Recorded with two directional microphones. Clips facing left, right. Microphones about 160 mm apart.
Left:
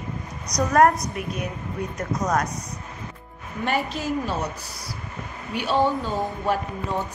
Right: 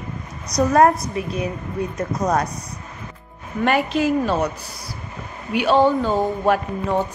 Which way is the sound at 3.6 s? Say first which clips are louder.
Right 7 dB; 90° right.